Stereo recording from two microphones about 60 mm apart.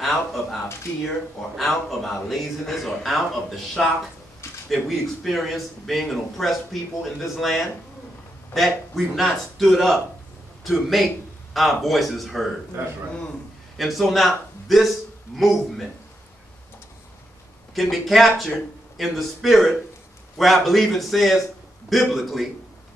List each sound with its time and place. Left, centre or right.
0.0 s speech: centre
1.6 s speech: centre
12.8 s a man's voice: right
13.7 s a man's voice: centre
17.7 s speech: centre